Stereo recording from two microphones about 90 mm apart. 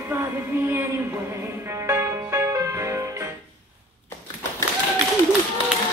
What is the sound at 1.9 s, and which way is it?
Music, 30° right (ahead or behind).